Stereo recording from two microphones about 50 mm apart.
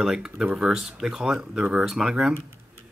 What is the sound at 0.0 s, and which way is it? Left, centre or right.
Speech, centre.